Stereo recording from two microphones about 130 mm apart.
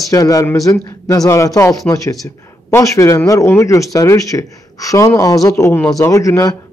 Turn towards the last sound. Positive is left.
turn(degrees=25)  # may be behind; listen again after turning